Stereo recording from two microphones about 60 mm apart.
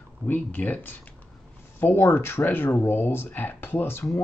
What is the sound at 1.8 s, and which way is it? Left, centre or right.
Speech, left.